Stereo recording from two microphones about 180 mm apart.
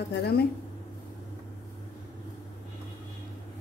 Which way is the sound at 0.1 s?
65° left (ahead or behind).